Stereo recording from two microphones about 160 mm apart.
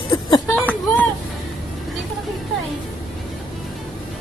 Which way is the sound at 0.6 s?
10° left (ahead or behind).